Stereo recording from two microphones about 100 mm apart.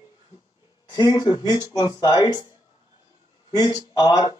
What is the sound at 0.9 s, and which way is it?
Speech, 45° left (ahead or behind).